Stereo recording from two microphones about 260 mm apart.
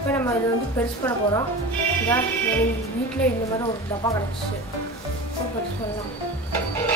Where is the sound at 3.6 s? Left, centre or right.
Centre.